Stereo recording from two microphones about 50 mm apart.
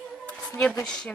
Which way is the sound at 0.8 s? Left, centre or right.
Centre.